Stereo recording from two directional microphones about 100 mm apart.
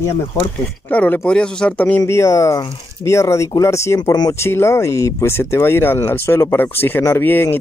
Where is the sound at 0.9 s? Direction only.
15° left (ahead or behind).